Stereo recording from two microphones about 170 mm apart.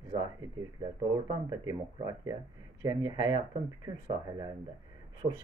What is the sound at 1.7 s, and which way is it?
Speech, 20° right (ahead or behind).